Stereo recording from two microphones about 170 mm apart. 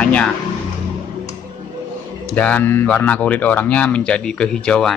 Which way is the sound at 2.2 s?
10° left (ahead or behind).